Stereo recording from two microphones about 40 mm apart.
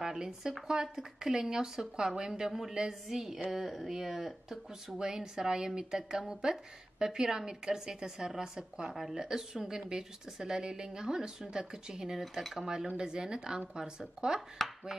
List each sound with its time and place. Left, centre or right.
0.0 s speech: centre
12.9 s speech: centre